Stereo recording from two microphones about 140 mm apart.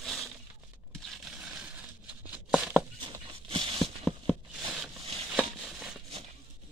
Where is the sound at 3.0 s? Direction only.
35° right (ahead or behind).